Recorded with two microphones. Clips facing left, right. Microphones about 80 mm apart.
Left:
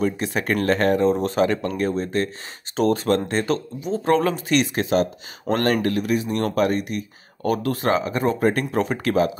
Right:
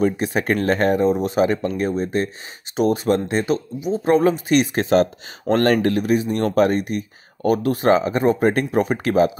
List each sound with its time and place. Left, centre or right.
0.0 s speech: right
4.7 s speech: right